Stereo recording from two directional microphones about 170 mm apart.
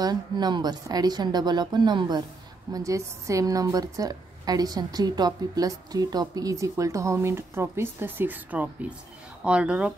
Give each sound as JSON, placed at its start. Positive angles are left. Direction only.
{"t": 0.0, "sound": "a woman's voice", "side_deg": -25}